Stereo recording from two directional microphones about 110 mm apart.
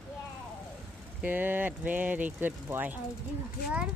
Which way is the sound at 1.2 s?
15° right (ahead or behind).